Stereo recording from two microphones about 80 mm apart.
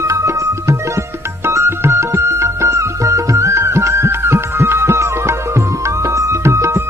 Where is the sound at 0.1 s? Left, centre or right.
Right.